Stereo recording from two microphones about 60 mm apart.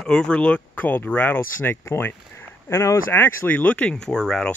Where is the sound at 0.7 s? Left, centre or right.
Left.